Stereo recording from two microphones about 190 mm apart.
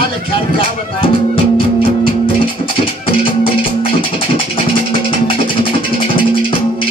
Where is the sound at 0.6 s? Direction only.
25° left (ahead or behind).